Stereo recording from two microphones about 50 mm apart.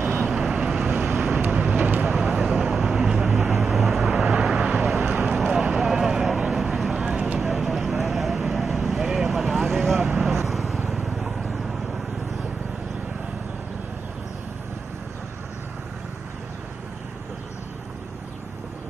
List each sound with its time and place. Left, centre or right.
0.2 s vehicle: centre
1.4 s vehicle: right
2.0 s a sound: centre
3.3 s vehicle: centre
5.2 s a sound: centre
7.0 s vehicle: right
7.3 s vehicle: centre